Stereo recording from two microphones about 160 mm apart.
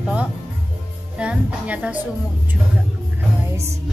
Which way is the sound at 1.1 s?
5° right (ahead or behind).